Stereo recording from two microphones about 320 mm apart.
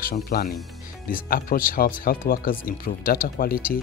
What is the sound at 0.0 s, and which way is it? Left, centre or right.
Speech, left.